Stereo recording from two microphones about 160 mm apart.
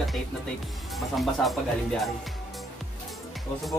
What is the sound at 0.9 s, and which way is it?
Speech, centre (ahead or behind).